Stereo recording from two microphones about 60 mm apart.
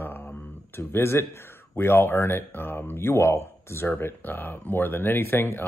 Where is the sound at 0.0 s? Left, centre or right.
Left.